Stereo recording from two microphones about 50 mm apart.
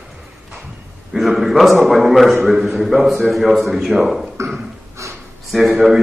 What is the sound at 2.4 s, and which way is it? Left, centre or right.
A man's voice, centre.